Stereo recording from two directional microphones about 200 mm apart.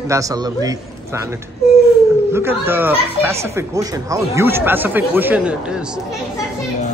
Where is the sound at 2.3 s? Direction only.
10° right (ahead or behind).